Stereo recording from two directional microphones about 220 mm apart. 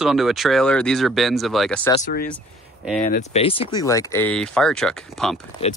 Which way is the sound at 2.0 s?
40° left (ahead or behind).